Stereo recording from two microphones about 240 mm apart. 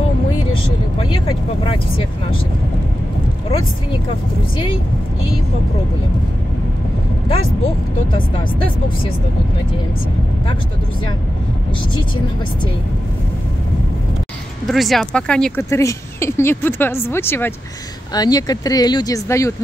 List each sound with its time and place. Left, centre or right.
0.9 s speech: left
3.4 s speech: left
14.7 s speech: centre